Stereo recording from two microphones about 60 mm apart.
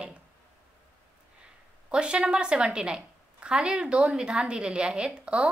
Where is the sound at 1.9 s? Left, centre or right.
Centre.